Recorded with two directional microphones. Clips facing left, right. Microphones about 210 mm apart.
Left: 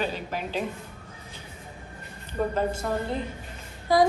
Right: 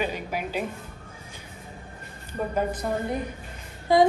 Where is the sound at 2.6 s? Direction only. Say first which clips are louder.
Even; 15° right (ahead or behind).